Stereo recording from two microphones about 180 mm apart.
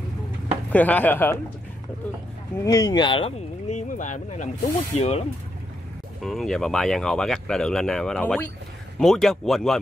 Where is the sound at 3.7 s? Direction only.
45° left (ahead or behind).